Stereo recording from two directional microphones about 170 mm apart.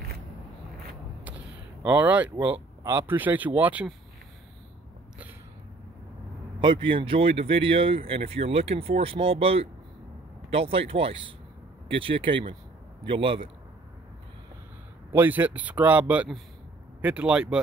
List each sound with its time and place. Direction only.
1.8 s speech: 10° right (ahead or behind)
6.6 s speech: 30° right (ahead or behind)
15.1 s speech: 10° right (ahead or behind)